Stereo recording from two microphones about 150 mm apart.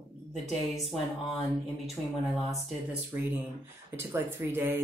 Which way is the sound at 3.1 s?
15° right (ahead or behind).